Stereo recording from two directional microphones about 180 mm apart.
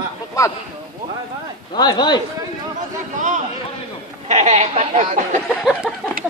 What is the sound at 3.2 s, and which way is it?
A man's voice, 45° right (ahead or behind).